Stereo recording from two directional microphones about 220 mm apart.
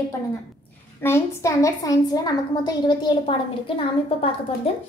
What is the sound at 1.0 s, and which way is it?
A woman's voice, 10° left (ahead or behind).